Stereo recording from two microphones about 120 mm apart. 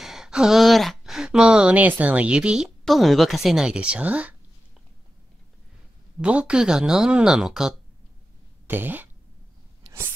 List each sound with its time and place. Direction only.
0.0 s speech: 5° right (ahead or behind)
6.2 s speech: 10° right (ahead or behind)
8.6 s speech: 15° right (ahead or behind)